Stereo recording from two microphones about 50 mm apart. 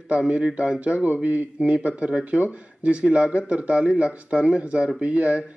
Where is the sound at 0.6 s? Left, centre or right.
Right.